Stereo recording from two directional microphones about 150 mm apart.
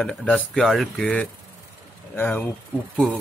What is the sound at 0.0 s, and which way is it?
Speech, 5° left (ahead or behind).